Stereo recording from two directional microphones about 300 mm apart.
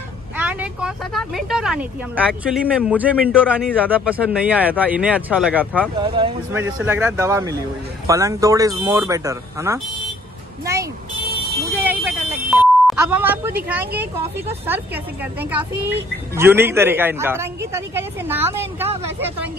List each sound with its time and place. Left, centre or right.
0.4 s speech: centre
6.0 s a woman's voice: centre
16.3 s a woman's voice: centre